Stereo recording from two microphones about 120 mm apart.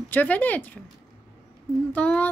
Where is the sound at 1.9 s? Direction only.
10° left (ahead or behind).